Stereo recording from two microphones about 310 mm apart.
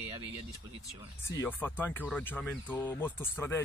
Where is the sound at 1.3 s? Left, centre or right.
Centre.